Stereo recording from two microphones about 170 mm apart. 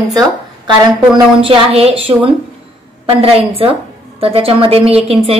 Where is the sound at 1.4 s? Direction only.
35° right (ahead or behind).